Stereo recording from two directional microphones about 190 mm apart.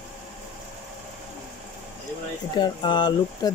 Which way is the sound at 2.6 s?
25° left (ahead or behind).